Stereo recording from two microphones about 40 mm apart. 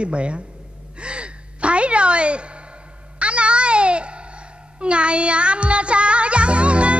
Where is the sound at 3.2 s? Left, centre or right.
Right.